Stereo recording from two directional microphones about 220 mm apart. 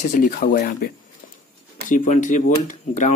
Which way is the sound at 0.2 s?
40° left (ahead or behind).